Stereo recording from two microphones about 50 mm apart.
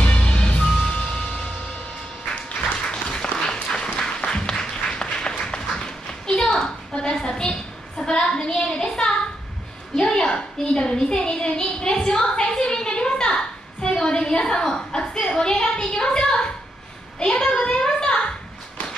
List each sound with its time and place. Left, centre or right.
0.0 s music: left
2.9 s applause: centre
8.0 s a sound: centre